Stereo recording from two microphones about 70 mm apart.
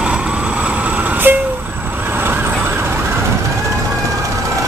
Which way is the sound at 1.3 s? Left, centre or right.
Right.